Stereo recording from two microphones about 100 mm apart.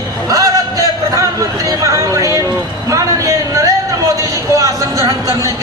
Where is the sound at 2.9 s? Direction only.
30° right (ahead or behind).